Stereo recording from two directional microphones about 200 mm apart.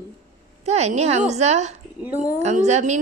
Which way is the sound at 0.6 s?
35° right (ahead or behind).